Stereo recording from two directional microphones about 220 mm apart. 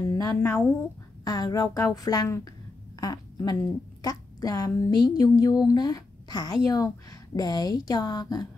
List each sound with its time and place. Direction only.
0.1 s speech: 15° left (ahead or behind)